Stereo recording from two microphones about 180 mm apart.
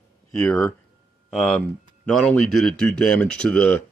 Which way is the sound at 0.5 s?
15° left (ahead or behind).